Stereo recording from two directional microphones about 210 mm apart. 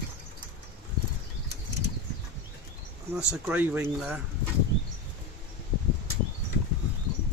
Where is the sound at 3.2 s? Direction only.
5° right (ahead or behind).